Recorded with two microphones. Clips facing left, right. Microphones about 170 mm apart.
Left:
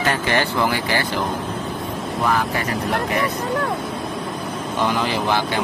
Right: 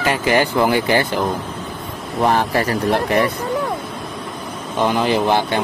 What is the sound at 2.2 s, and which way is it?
Speech, 30° right (ahead or behind).